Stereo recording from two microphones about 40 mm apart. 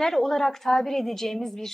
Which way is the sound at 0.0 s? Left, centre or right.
Centre.